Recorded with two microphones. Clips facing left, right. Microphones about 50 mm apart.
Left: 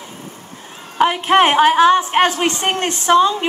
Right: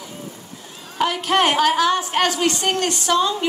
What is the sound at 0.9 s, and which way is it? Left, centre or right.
A woman's voice, left.